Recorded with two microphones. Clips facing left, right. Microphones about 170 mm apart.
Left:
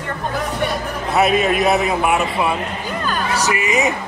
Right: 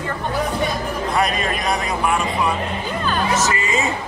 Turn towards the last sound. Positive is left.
turn(degrees=20)  # may be behind; listen again after turning